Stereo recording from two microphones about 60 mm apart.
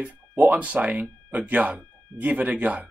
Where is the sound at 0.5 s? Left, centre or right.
Right.